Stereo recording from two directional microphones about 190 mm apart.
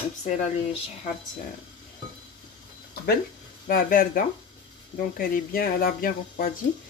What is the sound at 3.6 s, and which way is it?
Speech, 50° left (ahead or behind).